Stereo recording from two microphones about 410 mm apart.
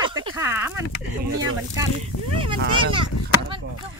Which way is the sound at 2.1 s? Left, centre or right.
Left.